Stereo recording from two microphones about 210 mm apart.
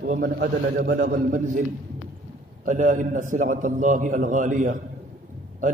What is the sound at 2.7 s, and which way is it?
A man's voice, 40° right (ahead or behind).